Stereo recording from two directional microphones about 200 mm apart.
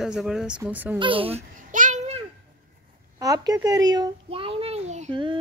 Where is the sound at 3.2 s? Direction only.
20° right (ahead or behind).